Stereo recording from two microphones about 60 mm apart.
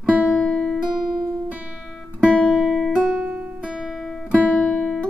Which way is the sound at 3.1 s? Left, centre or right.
Right.